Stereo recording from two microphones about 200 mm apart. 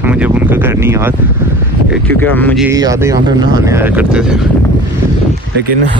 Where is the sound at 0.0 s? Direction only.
10° right (ahead or behind).